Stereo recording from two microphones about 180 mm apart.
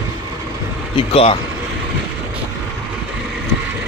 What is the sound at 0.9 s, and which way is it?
Speech, 30° left (ahead or behind).